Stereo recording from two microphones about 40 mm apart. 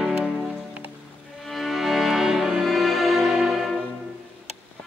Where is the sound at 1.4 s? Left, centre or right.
Centre.